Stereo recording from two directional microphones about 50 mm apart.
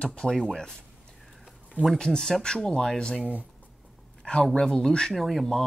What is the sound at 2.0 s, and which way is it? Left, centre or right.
Speech, centre.